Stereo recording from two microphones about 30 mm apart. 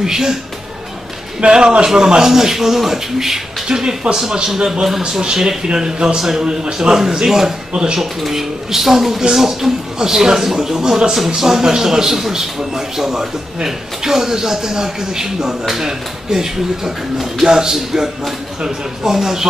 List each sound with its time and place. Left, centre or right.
0.0 s a man's voice: centre
1.4 s a man's voice: right
2.2 s a man's voice: centre
3.6 s a man's voice: right
8.3 s a man's voice: centre